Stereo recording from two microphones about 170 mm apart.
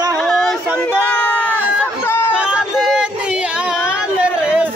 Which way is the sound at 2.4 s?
5° right (ahead or behind).